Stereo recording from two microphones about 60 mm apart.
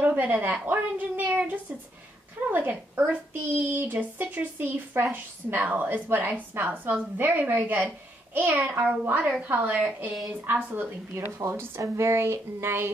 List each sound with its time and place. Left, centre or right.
0.0 s a woman's voice: right
10.4 s a woman's voice: right